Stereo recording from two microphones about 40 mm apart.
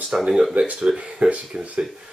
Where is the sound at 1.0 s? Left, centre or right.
Right.